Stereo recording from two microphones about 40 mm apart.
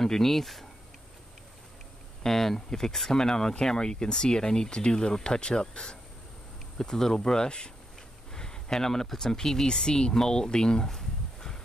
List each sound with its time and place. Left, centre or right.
0.0 s speech: centre
2.2 s speech: centre
10.9 s a sound: centre